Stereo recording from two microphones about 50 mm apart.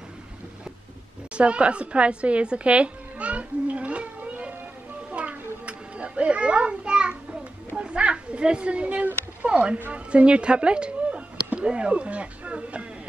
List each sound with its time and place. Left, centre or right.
1.3 s a woman's voice: right
5.1 s children playing: right
7.7 s a sound: right
9.8 s speech: right